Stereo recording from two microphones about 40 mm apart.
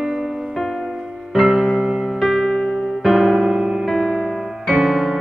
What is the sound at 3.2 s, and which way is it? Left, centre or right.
Music, centre.